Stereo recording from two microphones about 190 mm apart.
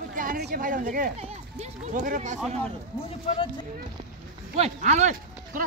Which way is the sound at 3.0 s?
30° left (ahead or behind).